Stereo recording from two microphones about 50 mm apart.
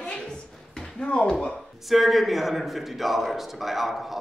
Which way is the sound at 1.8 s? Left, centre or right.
Centre.